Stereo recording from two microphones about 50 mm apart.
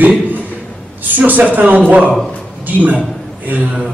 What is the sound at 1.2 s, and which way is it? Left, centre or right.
A man's voice, right.